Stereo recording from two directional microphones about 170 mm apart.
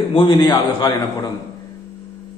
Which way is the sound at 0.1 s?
30° left (ahead or behind).